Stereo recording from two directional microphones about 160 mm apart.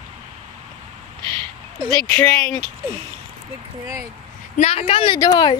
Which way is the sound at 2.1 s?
5° left (ahead or behind).